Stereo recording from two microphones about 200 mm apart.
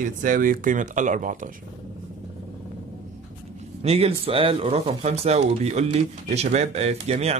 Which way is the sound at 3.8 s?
30° right (ahead or behind).